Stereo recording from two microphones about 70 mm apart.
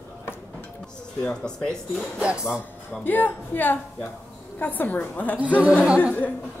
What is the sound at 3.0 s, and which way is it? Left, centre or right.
Speech, left.